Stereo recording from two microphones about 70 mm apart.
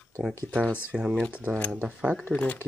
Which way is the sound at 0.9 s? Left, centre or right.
Centre.